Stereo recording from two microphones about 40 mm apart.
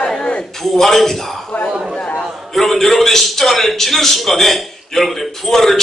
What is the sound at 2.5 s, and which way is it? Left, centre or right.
A man's voice, centre.